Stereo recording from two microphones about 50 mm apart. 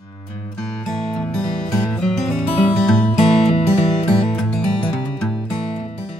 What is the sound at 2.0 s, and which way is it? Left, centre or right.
Music, centre.